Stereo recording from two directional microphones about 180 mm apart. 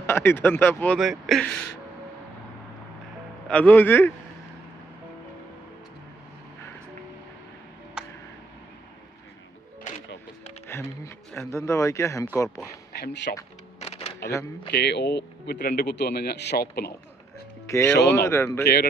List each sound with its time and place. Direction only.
0.0 s speech: 15° left (ahead or behind)
0.9 s speech: centre (ahead or behind)
3.4 s speech: 5° left (ahead or behind)
10.7 s music: 15° left (ahead or behind)
11.3 s speech: 15° left (ahead or behind)
13.0 s speech: 70° left (ahead or behind)
13.7 s a sound: 35° left (ahead or behind)
14.7 s speech: 70° left (ahead or behind)
17.6 s speech: 15° left (ahead or behind)
17.9 s speech: 70° left (ahead or behind)
18.2 s speech: 15° left (ahead or behind)